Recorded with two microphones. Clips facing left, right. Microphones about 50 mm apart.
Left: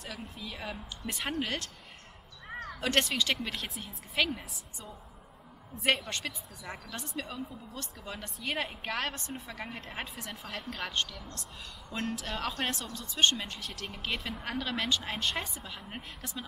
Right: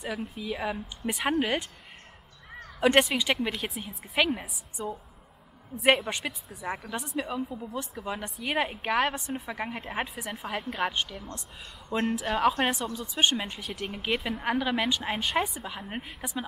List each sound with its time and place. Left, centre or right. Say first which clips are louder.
0.0 s a woman's voice: right 8 dB; centre
2.8 s a woman's voice: right 7 dB; centre
5.9 s a woman's voice: right 6 dB; centre